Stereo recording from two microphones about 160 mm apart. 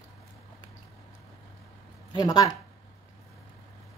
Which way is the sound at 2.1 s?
25° left (ahead or behind).